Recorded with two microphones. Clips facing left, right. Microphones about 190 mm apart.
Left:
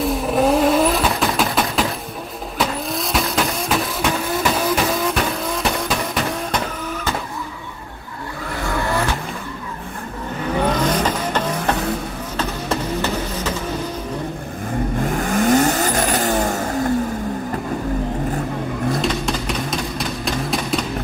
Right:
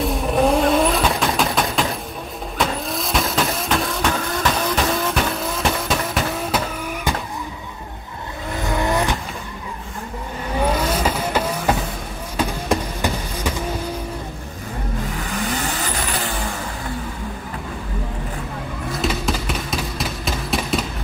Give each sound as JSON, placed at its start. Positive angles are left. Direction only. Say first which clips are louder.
{"t": 0.0, "sound": "vehicle", "louder": "left 1 dB", "side_deg": 0}
{"t": 6.5, "sound": "vehicle", "louder": "even", "side_deg": -15}
{"t": 8.6, "sound": "vehicle", "louder": "right 1 dB", "side_deg": -15}
{"t": 10.6, "sound": "vehicle", "louder": "left 1 dB", "side_deg": -10}
{"t": 12.4, "sound": "a sound", "louder": "right 2 dB", "side_deg": -10}
{"t": 15.0, "sound": "vehicle", "louder": "left 11 dB", "side_deg": 45}
{"t": 18.9, "sound": "a sound", "louder": "left 1 dB", "side_deg": 0}